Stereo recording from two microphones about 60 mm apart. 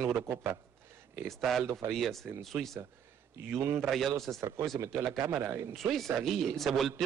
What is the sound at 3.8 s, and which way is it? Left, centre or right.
Speech, centre.